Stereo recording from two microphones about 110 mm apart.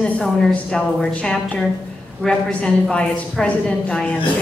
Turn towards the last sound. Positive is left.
turn(degrees=10)  # may be behind; listen again after turning